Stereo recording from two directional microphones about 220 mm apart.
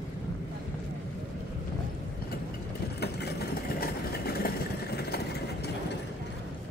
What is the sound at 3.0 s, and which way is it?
Vehicle, 45° left (ahead or behind).